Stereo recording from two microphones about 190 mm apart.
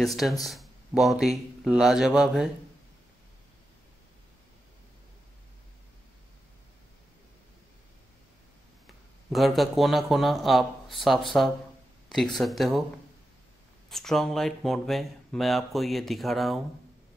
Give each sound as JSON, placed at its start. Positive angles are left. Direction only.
{"t": 0.0, "sound": "speech", "side_deg": 0}
{"t": 8.8, "sound": "speech", "side_deg": 0}
{"t": 13.8, "sound": "speech", "side_deg": 0}